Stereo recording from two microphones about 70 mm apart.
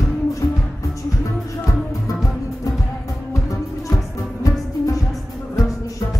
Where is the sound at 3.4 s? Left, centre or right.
Left.